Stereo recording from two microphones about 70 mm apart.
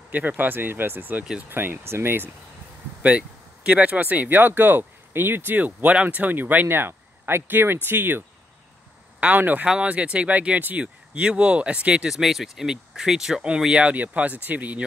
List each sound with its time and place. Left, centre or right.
0.1 s speech: right
3.0 s speech: centre
9.2 s speech: right